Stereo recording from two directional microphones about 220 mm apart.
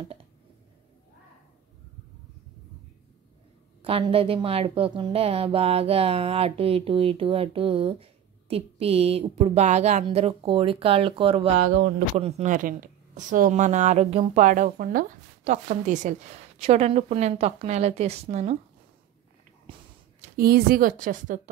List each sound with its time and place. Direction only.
3.8 s a woman's voice: 25° right (ahead or behind)
19.7 s a sound: 25° right (ahead or behind)
20.3 s a woman's voice: 45° right (ahead or behind)